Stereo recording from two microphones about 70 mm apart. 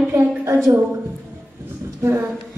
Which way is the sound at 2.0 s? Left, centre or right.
Right.